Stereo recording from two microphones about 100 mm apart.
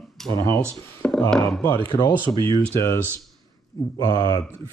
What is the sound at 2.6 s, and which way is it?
Speech, 25° left (ahead or behind).